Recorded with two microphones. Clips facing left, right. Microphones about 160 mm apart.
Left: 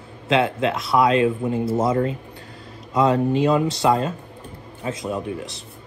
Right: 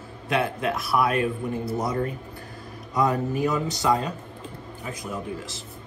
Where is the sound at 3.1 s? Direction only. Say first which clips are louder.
Left 6 dB; 90° left.